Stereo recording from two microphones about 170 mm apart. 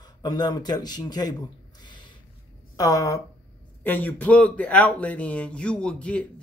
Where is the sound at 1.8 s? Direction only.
25° left (ahead or behind).